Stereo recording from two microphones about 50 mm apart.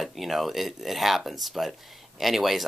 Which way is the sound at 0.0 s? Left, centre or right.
Centre.